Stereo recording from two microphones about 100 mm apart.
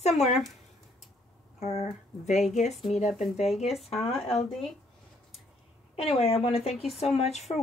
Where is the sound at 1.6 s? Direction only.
90° left.